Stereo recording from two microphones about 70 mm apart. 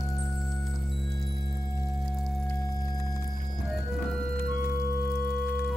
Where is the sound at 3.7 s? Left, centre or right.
Centre.